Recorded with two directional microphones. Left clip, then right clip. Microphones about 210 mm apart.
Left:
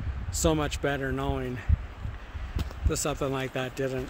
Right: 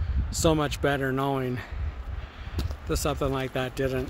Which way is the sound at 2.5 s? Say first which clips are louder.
Right 1 dB; 10° right (ahead or behind).